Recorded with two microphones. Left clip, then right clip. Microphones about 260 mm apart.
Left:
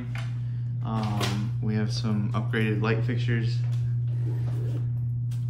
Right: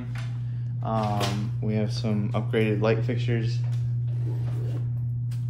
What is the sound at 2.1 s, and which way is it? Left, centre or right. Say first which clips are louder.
A man's voice: right 4 dB; centre.